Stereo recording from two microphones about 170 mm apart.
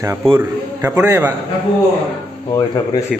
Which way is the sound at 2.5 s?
20° left (ahead or behind).